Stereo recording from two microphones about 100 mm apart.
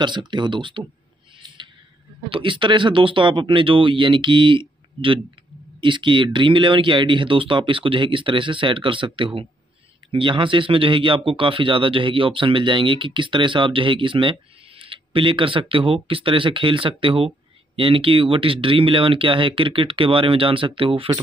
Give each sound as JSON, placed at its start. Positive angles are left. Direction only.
{"t": 0.0, "sound": "speech", "side_deg": -50}
{"t": 2.2, "sound": "a man's voice", "side_deg": -60}